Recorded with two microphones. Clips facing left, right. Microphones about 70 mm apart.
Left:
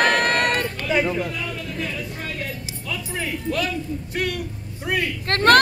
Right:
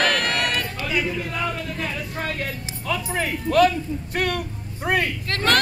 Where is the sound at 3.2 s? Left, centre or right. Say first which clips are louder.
Right 8 dB; right.